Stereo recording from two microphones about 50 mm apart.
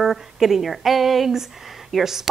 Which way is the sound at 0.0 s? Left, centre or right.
Centre.